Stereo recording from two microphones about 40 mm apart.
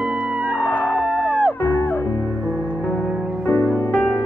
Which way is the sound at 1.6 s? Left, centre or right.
Left.